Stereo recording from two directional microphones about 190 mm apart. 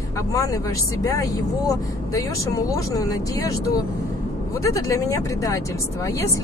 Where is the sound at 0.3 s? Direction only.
15° left (ahead or behind).